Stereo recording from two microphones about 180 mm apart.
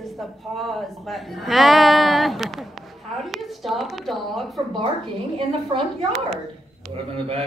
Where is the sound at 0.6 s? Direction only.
Centre (ahead or behind).